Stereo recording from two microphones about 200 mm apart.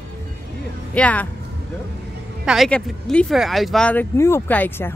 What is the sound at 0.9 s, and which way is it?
Speech, 5° left (ahead or behind).